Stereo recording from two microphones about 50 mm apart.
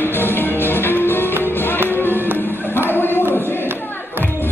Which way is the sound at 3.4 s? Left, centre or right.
Left.